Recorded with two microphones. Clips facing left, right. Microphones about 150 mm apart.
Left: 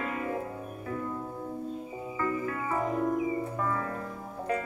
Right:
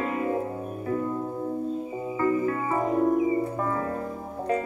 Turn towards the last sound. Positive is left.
turn(degrees=-30)  # may be behind; listen again after turning